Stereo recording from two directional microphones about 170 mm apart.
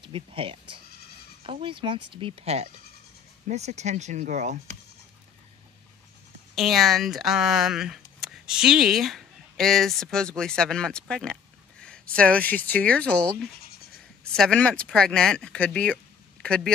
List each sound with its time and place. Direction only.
0.0 s speech: 30° right (ahead or behind)
6.5 s speech: centre (ahead or behind)